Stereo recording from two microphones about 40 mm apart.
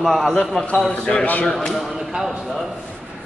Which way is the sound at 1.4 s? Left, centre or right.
Centre.